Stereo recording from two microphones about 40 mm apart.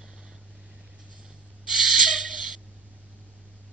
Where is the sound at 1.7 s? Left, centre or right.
Centre.